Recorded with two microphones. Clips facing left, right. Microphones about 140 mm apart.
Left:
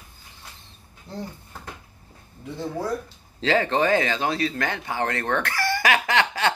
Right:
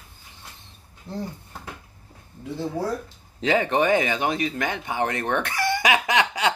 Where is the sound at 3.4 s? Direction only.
15° right (ahead or behind).